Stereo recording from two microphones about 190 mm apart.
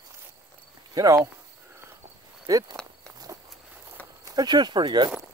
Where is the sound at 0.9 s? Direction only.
20° right (ahead or behind).